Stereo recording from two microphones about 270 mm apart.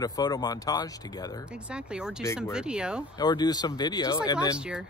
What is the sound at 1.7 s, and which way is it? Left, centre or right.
Speech, centre.